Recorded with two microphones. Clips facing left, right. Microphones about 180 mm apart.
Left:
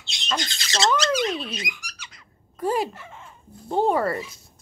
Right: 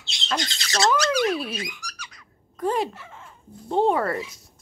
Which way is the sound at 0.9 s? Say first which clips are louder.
Right 1 dB; 20° left (ahead or behind).